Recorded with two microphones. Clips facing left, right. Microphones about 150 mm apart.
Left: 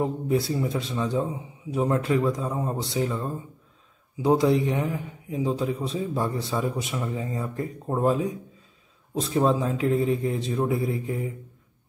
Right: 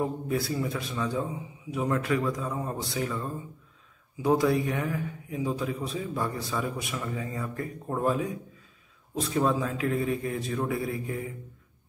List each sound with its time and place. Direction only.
0.0 s a man's voice: 20° left (ahead or behind)